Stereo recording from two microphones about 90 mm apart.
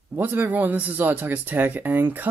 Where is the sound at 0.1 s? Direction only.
20° right (ahead or behind).